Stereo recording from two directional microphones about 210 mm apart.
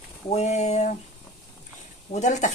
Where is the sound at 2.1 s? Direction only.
35° left (ahead or behind).